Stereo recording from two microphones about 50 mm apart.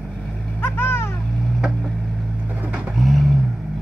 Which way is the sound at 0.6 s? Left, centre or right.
Left.